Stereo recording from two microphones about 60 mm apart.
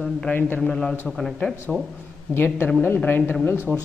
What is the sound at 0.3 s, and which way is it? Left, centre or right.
Speech, left.